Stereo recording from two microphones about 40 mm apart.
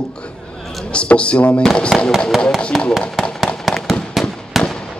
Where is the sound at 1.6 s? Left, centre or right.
Centre.